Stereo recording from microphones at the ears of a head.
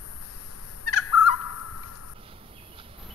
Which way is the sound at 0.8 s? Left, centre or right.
Left.